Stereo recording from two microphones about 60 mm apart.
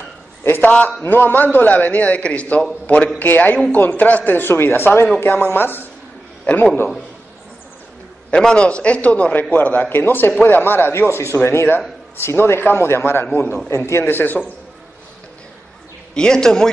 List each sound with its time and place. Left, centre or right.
0.6 s a man's voice: left
8.3 s a man's voice: centre; by 14.4 s left
16.2 s speech: centre